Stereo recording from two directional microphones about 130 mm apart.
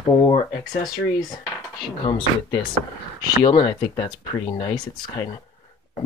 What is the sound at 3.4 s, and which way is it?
Speech, 35° left (ahead or behind).